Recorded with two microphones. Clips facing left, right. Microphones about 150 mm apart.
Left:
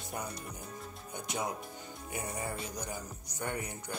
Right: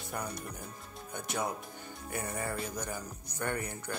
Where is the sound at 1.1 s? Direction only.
20° left (ahead or behind).